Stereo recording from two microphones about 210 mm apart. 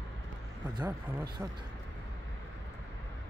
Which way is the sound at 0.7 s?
15° right (ahead or behind).